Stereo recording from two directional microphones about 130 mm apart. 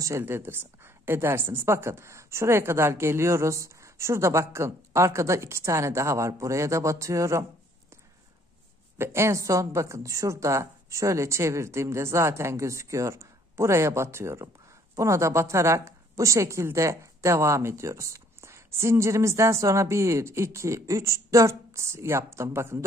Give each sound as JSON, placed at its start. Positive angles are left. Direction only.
{"t": 0.0, "sound": "a woman's voice", "side_deg": -20}
{"t": 8.9, "sound": "a woman's voice", "side_deg": -20}